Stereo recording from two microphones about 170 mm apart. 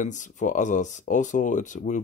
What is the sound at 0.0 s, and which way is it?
Speech, 45° left (ahead or behind).